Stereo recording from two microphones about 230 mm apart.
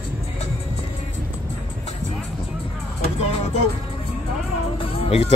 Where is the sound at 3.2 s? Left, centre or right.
Left.